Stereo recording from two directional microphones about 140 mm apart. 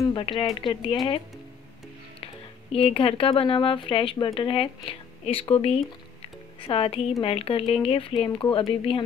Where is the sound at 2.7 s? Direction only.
40° left (ahead or behind).